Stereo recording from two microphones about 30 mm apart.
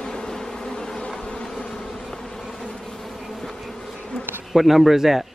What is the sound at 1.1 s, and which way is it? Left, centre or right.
Bee, left.